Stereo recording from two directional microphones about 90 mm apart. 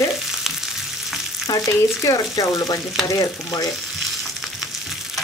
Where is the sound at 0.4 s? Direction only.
5° right (ahead or behind).